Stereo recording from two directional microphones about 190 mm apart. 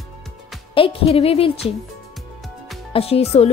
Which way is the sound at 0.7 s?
30° left (ahead or behind).